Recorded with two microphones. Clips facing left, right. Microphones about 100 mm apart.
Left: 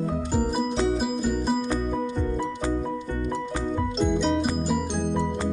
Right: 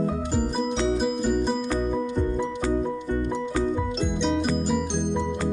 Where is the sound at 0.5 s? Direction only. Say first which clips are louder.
Even; 5° left (ahead or behind).